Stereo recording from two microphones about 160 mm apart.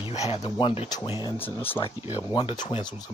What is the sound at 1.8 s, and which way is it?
Speech, 30° left (ahead or behind).